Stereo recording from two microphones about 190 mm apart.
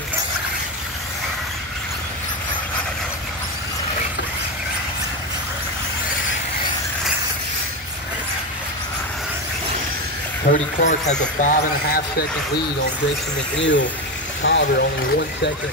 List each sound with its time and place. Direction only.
10.5 s speech: 40° left (ahead or behind)
13.6 s speech: 70° left (ahead or behind)